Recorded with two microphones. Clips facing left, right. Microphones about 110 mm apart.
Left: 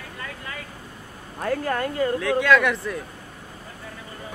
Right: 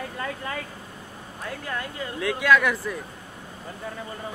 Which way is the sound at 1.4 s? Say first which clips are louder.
Left 8 dB; 55° left (ahead or behind).